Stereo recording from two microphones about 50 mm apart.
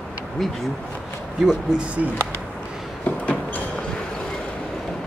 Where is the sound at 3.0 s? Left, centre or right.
Left.